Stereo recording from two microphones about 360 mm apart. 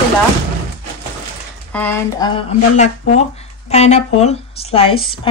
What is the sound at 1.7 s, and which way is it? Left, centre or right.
Speech, centre.